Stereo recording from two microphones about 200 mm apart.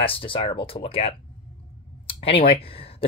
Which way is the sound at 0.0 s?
25° left (ahead or behind).